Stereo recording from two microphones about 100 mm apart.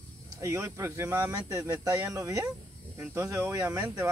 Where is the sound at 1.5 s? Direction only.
35° right (ahead or behind).